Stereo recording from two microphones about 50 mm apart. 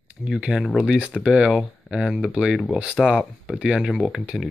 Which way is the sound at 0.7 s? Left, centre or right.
Right.